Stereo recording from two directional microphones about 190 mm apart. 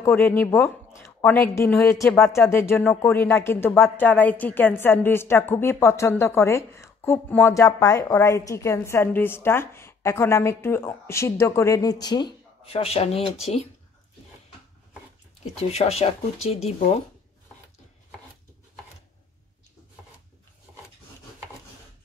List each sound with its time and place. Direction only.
0.0 s a woman's voice: 10° left (ahead or behind); by 13.7 s 35° left (ahead or behind)
15.7 s speech: 35° left (ahead or behind)